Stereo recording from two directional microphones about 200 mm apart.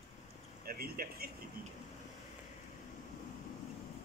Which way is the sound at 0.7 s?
50° right (ahead or behind).